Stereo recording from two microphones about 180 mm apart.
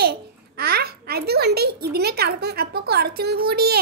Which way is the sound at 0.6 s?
60° right (ahead or behind).